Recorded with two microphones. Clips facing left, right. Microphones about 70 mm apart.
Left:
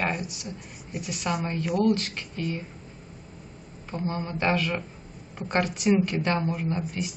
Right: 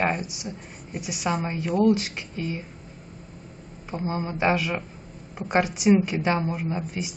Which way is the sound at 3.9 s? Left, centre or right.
Centre.